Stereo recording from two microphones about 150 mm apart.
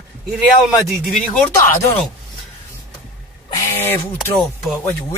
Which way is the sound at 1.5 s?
20° left (ahead or behind).